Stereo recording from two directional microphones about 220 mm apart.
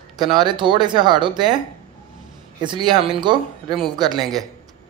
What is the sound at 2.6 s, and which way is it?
Speech, 20° right (ahead or behind).